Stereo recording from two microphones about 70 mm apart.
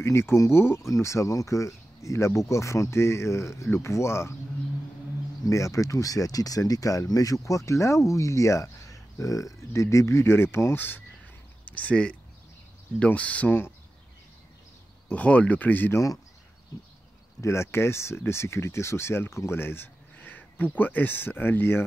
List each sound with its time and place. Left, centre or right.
0.0 s speech: left
5.4 s speech: left; by 13.5 s centre
15.0 s speech: centre
15.9 s speech: left
17.4 s speech: left